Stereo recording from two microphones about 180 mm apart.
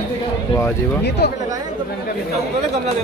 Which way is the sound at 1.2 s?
65° left (ahead or behind).